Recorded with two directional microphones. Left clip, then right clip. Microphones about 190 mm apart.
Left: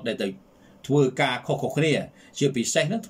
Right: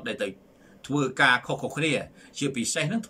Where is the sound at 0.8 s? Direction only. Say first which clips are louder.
Even; 15° left (ahead or behind).